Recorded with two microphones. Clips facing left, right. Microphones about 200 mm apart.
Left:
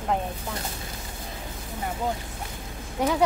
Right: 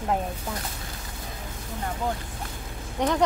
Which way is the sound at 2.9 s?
5° left (ahead or behind).